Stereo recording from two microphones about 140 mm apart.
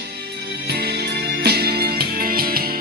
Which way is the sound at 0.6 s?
90° right.